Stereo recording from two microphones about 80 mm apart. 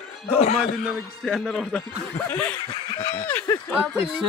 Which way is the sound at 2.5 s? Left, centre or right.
Left.